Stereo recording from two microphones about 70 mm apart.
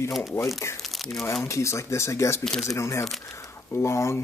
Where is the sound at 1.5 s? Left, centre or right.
Left.